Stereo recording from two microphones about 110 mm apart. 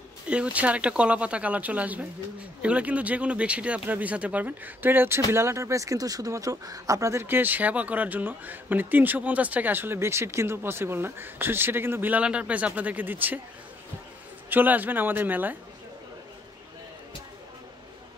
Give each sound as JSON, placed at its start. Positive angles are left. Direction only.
{"t": 0.3, "sound": "speech", "side_deg": -10}
{"t": 14.5, "sound": "speech", "side_deg": -15}